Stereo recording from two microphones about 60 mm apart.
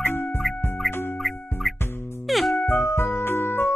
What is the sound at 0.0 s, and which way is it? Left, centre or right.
Music, left.